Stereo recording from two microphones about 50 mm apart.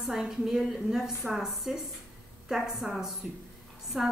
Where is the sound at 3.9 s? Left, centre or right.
Right.